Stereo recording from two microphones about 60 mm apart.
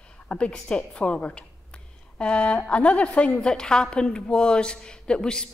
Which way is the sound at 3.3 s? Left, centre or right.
Centre.